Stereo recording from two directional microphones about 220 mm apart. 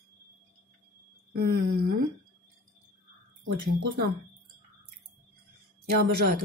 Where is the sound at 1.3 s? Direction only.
45° right (ahead or behind).